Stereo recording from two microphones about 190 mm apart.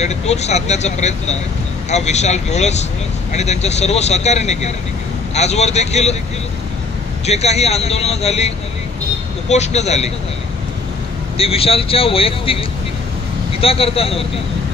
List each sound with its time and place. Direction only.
0.0 s speech: 35° left (ahead or behind)
7.2 s speech: 35° left (ahead or behind)
11.3 s speech: 30° left (ahead or behind)